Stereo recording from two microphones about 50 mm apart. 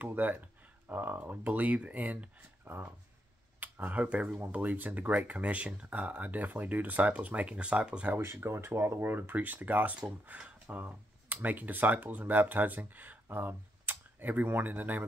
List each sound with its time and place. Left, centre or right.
0.0 s speech: right
2.6 s speech: right
8.2 s speech: right